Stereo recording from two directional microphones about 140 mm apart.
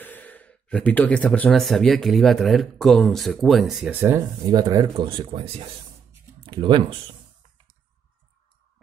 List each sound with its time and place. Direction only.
0.0 s speech: 10° left (ahead or behind)
3.9 s speech: 15° right (ahead or behind)
4.5 s speech: 30° right (ahead or behind)